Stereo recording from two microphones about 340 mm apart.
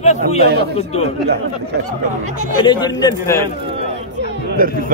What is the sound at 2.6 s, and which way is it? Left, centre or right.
Speech, centre.